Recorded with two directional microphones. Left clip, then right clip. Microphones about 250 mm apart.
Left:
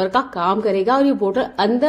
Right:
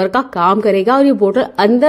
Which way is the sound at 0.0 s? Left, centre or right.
Right.